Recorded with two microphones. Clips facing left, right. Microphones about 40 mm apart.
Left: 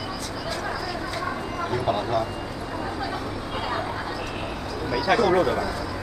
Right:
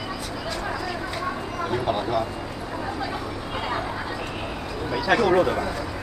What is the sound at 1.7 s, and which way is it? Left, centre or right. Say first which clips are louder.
Speech: even; centre.